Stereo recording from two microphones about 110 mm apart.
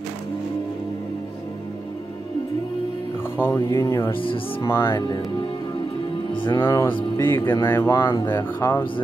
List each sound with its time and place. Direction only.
3.3 s speech: 20° left (ahead or behind)
4.1 s speech: 50° left (ahead or behind)
4.9 s speech: 35° left (ahead or behind)
6.3 s speech: 50° left (ahead or behind)
6.6 s speech: 25° left (ahead or behind)